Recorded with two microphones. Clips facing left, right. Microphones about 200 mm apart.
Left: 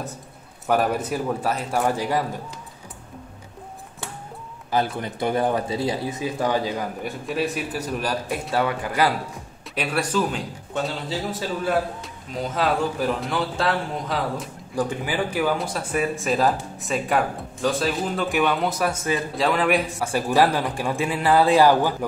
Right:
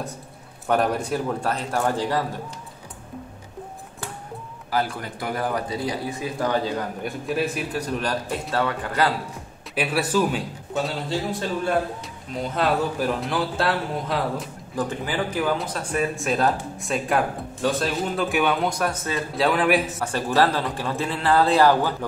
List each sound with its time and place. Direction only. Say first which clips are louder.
0.7 s a man's voice: even; 5° left (ahead or behind)
4.6 s a man's voice: left 2 dB; 20° left (ahead or behind)
7.0 s a man's voice: right 1 dB; centre (ahead or behind)
9.8 s a man's voice: right 1 dB; 5° right (ahead or behind)
14.8 s a man's voice: left 1 dB; 10° left (ahead or behind)
20.0 s a man's voice: left 1 dB; 10° left (ahead or behind)